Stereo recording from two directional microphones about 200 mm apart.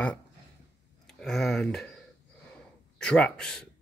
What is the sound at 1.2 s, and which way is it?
Speech, centre (ahead or behind).